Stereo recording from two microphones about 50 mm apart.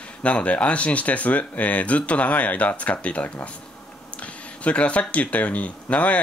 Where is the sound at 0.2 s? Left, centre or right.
Left.